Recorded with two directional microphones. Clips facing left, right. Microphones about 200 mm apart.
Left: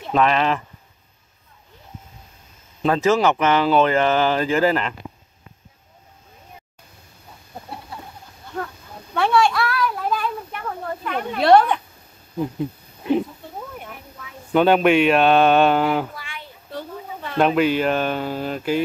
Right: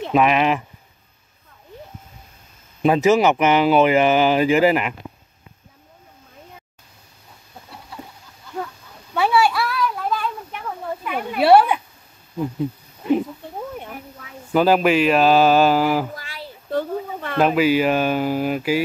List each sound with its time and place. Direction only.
0.1 s speech: 10° right (ahead or behind)
2.8 s speech: 15° right (ahead or behind)
9.1 s a sound: 5° right (ahead or behind)
11.1 s speech: 10° right (ahead or behind)
14.5 s speech: 5° right (ahead or behind)
16.2 s child singing: 35° right (ahead or behind)
16.7 s a sound: 60° right (ahead or behind)
17.4 s speech: 5° right (ahead or behind)